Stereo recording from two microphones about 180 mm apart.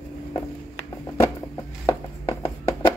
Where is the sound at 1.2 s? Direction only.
15° left (ahead or behind).